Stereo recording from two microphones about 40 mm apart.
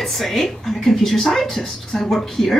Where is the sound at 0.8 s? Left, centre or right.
Centre.